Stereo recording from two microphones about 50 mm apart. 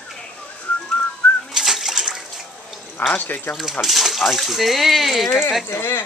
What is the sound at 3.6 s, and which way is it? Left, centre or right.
Speech, centre.